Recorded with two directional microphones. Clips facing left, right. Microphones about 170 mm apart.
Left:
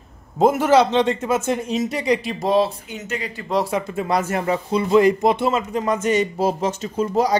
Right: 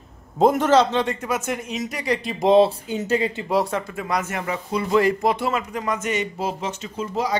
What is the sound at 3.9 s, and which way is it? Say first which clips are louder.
Speech: left 4 dB; 30° left (ahead or behind).